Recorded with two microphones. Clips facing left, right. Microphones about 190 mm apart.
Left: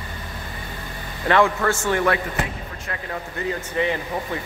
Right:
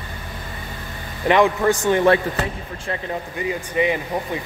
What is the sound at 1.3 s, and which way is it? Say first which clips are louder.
Speech: right 3 dB; 15° right (ahead or behind).